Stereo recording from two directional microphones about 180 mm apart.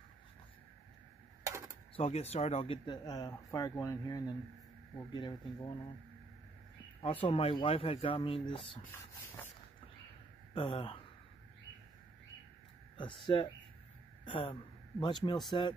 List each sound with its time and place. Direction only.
2.0 s speech: 35° left (ahead or behind)
7.0 s speech: 30° left (ahead or behind)
10.5 s speech: 30° left (ahead or behind)
12.9 s speech: 25° left (ahead or behind)